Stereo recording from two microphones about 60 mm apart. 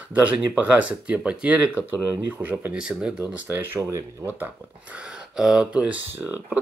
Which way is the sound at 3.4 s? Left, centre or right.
Right.